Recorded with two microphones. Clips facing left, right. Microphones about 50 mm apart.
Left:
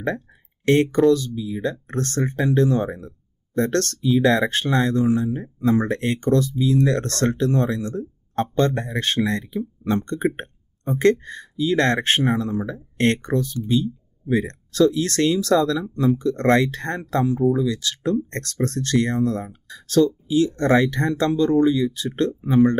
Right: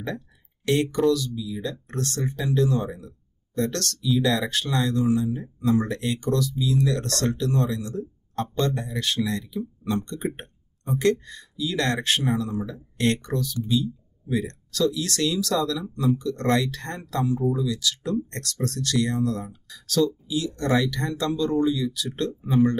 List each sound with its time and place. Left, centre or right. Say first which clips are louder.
0.7 s speech: left 5 dB; left